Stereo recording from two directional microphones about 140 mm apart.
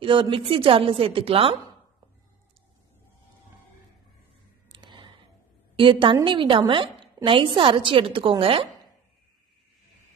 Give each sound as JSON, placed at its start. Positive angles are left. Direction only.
{"t": 0.0, "sound": "a woman's voice", "side_deg": -40}
{"t": 4.7, "sound": "a sound", "side_deg": -35}
{"t": 5.8, "sound": "a woman's voice", "side_deg": -35}